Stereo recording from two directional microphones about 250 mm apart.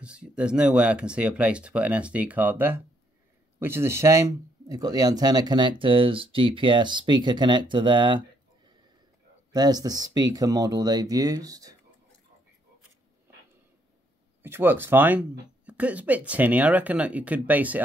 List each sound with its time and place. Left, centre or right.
0.0 s speech: centre
9.5 s speech: centre
14.4 s speech: centre